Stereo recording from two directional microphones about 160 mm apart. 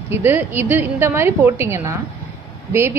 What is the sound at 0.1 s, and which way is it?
A woman's voice, 15° right (ahead or behind).